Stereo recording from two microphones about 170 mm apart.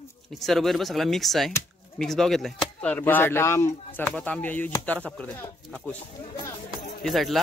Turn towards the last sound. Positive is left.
turn(degrees=0)  # may be behind; listen again after turning